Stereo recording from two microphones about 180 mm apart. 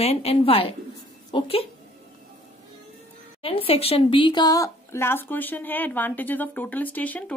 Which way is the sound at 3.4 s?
30° left (ahead or behind).